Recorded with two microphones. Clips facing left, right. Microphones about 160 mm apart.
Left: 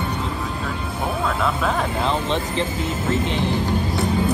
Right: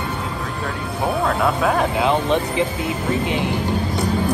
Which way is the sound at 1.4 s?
10° right (ahead or behind).